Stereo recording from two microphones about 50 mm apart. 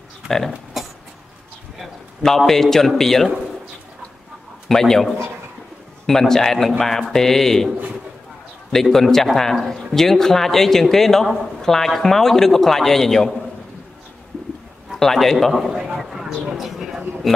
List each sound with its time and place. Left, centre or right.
0.8 s a sound: centre
3.0 s a man's voice: centre
4.6 s a man's voice: centre
6.0 s a man's voice: centre
8.7 s a man's voice: centre
14.9 s a man's voice: centre
16.0 s a sound: centre